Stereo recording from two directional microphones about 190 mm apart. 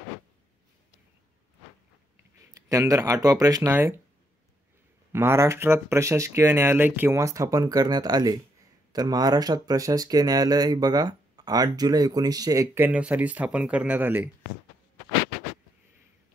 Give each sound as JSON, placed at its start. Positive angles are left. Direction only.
{"t": 2.5, "sound": "speech", "side_deg": -15}
{"t": 5.1, "sound": "speech", "side_deg": -10}